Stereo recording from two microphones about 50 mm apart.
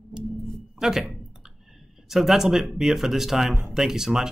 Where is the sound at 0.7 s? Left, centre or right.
Centre.